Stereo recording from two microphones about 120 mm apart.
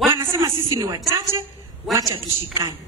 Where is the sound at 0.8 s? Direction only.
30° right (ahead or behind).